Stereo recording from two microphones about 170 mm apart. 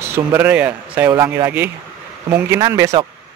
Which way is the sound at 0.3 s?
10° right (ahead or behind).